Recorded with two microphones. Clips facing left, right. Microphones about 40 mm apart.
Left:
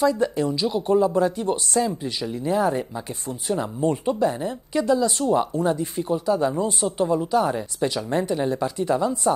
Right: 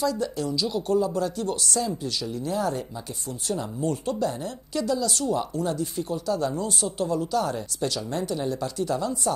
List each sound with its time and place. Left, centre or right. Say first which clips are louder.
0.0 s speech: left 6 dB; left